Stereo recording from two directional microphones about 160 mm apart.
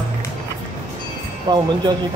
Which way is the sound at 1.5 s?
25° right (ahead or behind).